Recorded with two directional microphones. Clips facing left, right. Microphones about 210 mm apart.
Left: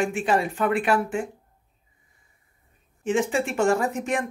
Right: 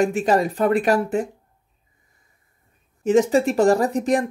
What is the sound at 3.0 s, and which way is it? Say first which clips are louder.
Speech: right 7 dB; 40° right (ahead or behind).